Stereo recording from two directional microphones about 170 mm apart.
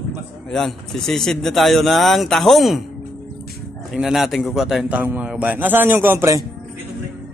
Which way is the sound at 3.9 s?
Centre (ahead or behind).